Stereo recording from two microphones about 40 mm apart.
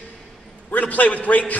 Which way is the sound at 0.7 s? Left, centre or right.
Left.